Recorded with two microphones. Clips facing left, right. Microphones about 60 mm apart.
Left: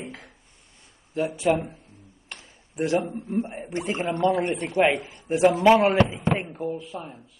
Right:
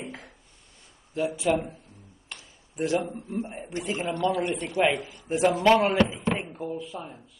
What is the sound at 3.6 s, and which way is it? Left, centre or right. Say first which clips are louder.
A man's voice: left 3 dB; left.